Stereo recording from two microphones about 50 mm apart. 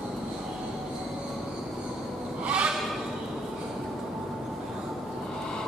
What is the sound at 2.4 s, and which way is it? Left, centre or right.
Bleat, centre.